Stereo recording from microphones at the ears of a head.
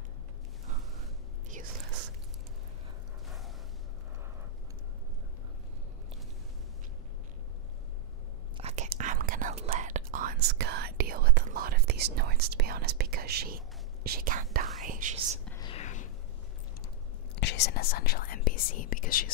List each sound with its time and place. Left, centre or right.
1.5 s whispering: right
8.5 s whispering: right
15.6 s whispering: left
17.4 s whispering: left